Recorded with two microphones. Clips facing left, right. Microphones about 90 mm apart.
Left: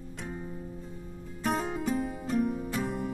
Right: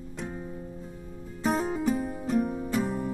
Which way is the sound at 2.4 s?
15° right (ahead or behind).